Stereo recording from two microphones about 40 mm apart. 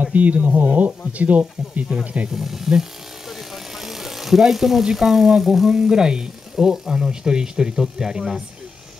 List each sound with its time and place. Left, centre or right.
0.0 s speech: right
2.3 s vehicle: centre
4.8 s speech: centre